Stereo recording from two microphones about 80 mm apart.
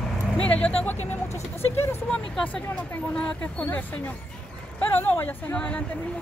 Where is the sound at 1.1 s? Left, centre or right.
Left.